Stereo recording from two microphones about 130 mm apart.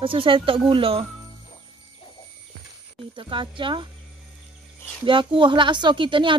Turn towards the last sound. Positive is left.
turn(degrees=-40)  # may be behind; listen again after turning